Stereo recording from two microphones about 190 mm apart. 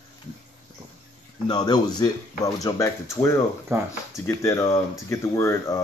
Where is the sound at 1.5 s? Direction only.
20° left (ahead or behind).